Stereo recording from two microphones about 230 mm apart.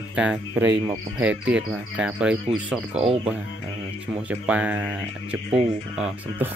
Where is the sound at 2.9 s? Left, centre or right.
Right.